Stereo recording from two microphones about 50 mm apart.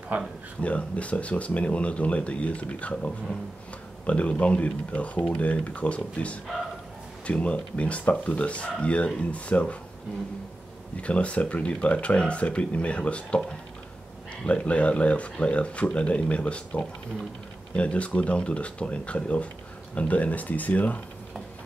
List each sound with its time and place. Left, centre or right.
0.1 s speech: right
0.6 s speech: left
11.0 s speech: left
14.4 s speech: left